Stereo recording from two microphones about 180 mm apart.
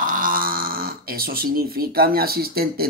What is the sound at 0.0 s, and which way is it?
Speech, 50° right (ahead or behind).